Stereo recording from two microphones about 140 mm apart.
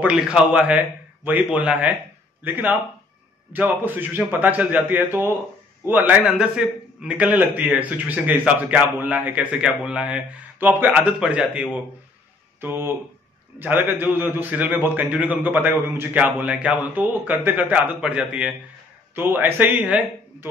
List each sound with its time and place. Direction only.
0.0 s a man's voice: 5° right (ahead or behind)